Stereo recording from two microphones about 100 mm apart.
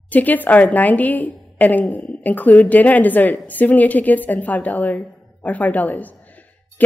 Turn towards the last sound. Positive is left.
turn(degrees=15)  # may be behind; listen again after turning